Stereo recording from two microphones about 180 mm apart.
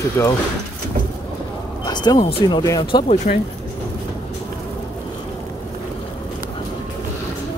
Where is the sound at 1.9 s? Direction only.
25° left (ahead or behind).